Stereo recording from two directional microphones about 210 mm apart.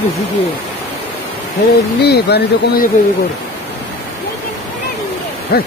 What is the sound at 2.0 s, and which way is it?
Speech, 50° left (ahead or behind).